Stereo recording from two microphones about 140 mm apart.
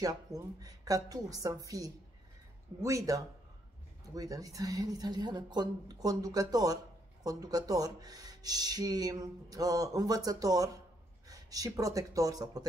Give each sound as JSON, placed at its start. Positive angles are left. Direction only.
{"t": 0.0, "sound": "speech", "side_deg": -25}